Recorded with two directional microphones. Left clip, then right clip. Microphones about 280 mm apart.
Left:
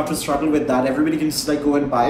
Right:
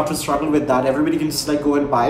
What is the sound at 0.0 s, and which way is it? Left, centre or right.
A man's voice, centre.